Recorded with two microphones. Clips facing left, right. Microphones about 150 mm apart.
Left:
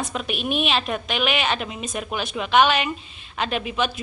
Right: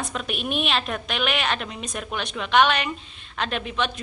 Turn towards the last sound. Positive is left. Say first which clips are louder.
# left 2 dB
turn(degrees=5)  # may be behind; listen again after turning